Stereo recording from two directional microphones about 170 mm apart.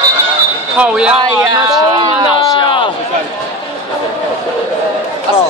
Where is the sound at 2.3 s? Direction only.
30° left (ahead or behind).